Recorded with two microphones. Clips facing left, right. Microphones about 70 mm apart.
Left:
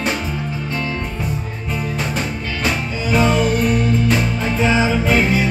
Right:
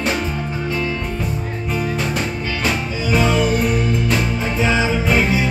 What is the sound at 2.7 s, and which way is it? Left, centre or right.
Music, centre.